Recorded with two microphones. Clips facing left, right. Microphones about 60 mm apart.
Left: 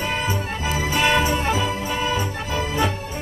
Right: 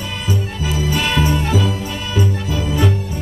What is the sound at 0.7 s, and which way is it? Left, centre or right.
Music, left.